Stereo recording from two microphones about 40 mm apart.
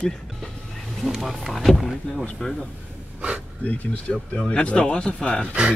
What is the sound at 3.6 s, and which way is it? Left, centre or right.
Speech, left.